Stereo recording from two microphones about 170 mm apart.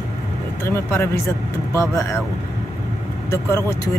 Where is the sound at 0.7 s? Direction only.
15° left (ahead or behind).